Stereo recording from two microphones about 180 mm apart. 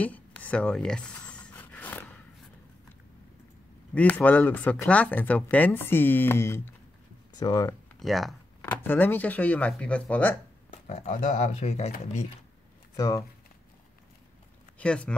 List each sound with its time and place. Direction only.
0.0 s a sound: 10° left (ahead or behind)
3.9 s speech: 10° left (ahead or behind)
8.0 s speech: centre (ahead or behind)
10.9 s speech: 40° left (ahead or behind)
12.9 s speech: 20° left (ahead or behind)
14.8 s speech: 5° left (ahead or behind)